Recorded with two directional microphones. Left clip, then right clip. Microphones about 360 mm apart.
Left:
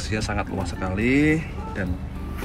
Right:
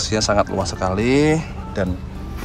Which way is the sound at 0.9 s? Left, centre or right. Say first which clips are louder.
Right 3 dB; right.